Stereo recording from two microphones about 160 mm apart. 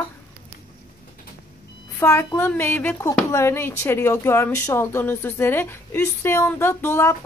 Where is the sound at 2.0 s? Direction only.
15° left (ahead or behind).